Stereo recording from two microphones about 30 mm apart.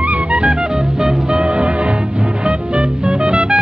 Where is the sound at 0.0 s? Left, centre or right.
Right.